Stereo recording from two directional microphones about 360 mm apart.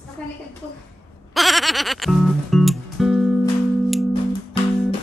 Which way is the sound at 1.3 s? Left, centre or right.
Centre.